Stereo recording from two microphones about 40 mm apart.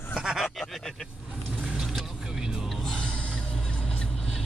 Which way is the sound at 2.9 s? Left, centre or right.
Left.